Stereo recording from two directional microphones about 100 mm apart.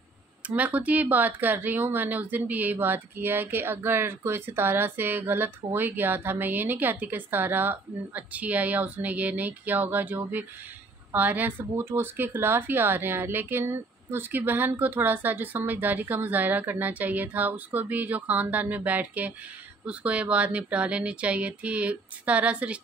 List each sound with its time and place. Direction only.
0.5 s speech: 15° right (ahead or behind)